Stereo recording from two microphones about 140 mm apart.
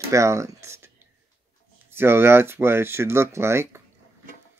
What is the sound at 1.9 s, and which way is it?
Speech, 15° right (ahead or behind).